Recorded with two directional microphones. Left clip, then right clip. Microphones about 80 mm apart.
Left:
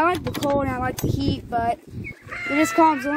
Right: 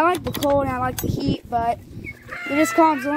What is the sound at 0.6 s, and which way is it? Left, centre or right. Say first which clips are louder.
Speech: right 2 dB; right.